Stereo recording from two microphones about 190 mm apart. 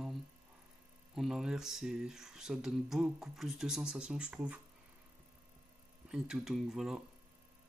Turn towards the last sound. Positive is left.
turn(degrees=0)  # may be behind; listen again after turning